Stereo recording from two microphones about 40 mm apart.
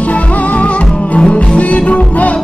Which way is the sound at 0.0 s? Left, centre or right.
Left.